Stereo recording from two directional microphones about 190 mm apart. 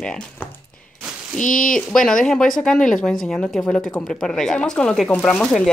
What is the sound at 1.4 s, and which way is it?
Speech, 45° left (ahead or behind).